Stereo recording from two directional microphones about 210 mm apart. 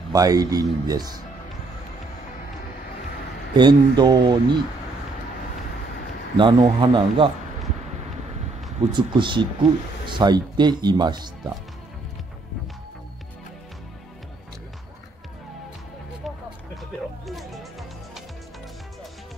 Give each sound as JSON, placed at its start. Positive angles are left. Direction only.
{"t": 0.1, "sound": "speech", "side_deg": -15}
{"t": 3.5, "sound": "speech", "side_deg": -20}
{"t": 6.3, "sound": "speech", "side_deg": -20}
{"t": 8.9, "sound": "speech", "side_deg": -20}
{"t": 17.3, "sound": "music", "side_deg": 0}